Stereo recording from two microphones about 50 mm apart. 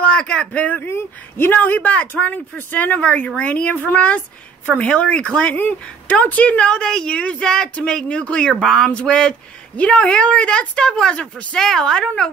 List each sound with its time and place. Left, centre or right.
0.0 s a sound: left
0.5 s speech: left
0.8 s speech: left
3.7 s speech: left; by 5.5 s centre
5.5 s speech: left; by 12.3 s centre